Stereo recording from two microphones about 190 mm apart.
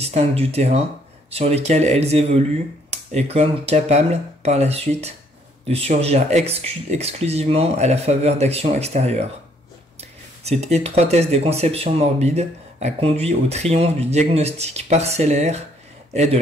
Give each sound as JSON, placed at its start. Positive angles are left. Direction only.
{"t": 0.0, "sound": "speech", "side_deg": -35}